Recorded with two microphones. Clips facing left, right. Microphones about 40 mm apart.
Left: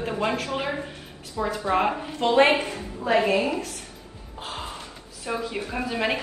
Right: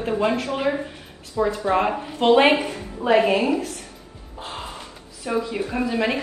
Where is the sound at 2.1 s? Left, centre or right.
Right.